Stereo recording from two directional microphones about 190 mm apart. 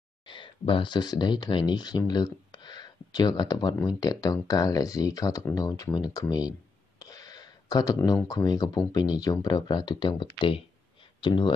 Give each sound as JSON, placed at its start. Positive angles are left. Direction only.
{"t": 0.3, "sound": "speech", "side_deg": 25}